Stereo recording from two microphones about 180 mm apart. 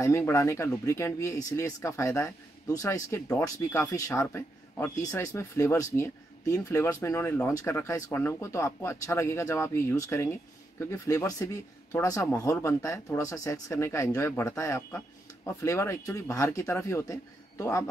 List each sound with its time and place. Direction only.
0.0 s speech: 15° left (ahead or behind)